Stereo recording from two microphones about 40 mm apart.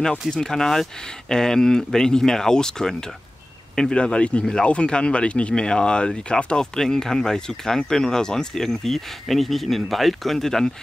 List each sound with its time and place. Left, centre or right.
0.4 s speech: centre